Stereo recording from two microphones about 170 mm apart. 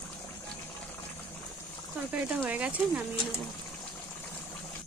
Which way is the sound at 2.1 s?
10° right (ahead or behind).